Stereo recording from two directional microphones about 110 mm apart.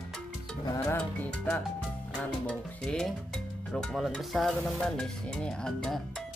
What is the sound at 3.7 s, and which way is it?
Stir, 5° left (ahead or behind).